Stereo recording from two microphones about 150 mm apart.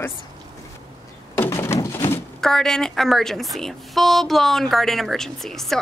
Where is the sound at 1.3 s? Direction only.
20° left (ahead or behind).